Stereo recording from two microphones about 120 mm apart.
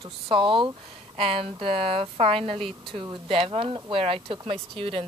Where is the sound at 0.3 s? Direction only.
45° right (ahead or behind).